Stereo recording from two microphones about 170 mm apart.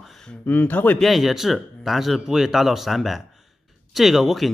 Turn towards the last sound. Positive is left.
turn(degrees=0)  # may be behind; listen again after turning